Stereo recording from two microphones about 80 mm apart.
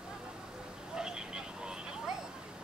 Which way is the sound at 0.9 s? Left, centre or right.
Centre.